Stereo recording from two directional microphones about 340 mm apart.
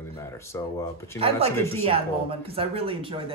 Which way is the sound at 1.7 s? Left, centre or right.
Centre.